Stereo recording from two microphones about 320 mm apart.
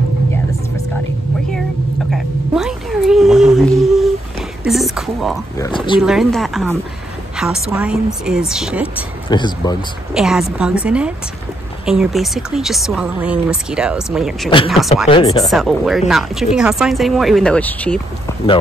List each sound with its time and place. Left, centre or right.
2.1 s a sound: centre
5.9 s speech: centre
9.3 s speech: centre
10.1 s speech: centre
15.0 s speech: centre
15.4 s speech: centre